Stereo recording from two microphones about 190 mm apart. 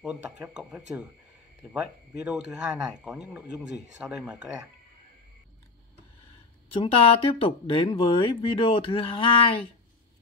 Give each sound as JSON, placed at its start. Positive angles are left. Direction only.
{"t": 0.0, "sound": "speech", "side_deg": -5}
{"t": 6.7, "sound": "speech", "side_deg": 30}